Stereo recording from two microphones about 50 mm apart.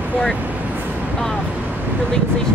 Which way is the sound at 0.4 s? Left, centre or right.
Right.